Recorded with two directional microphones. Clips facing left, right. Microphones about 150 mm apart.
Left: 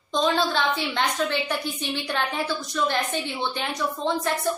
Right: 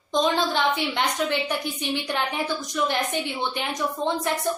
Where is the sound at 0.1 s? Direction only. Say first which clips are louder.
Even; 15° right (ahead or behind).